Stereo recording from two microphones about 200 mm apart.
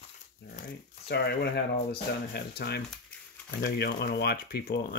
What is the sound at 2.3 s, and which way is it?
Speech, 55° left (ahead or behind).